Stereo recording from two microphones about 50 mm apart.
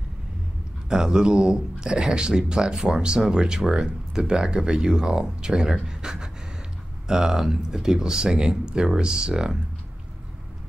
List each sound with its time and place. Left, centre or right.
0.8 s speech: centre